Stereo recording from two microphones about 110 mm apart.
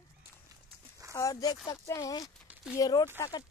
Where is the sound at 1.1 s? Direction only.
30° left (ahead or behind).